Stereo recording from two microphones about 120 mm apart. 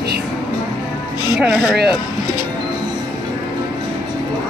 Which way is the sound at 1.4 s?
5° right (ahead or behind).